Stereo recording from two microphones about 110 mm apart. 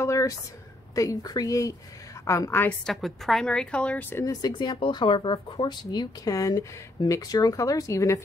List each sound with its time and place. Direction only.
0.0 s a sound: 30° left (ahead or behind)
0.9 s a woman's voice: 35° left (ahead or behind)
2.9 s a woman's voice: centre (ahead or behind)
4.2 s speech: 35° left (ahead or behind)